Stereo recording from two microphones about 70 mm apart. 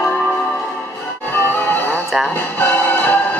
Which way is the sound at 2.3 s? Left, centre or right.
Left.